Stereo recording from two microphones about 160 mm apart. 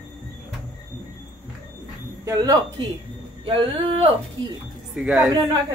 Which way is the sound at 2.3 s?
25° right (ahead or behind).